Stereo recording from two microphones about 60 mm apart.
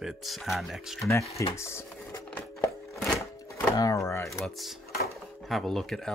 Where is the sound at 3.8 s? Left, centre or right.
Left.